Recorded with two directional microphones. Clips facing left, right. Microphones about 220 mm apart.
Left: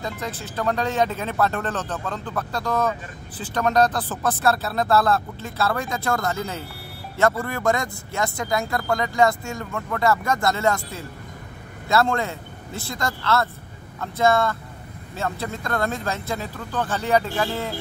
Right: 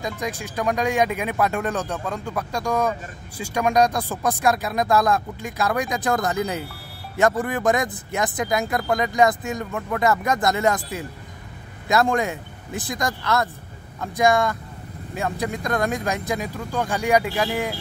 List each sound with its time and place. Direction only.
0.0 s speech: 15° right (ahead or behind)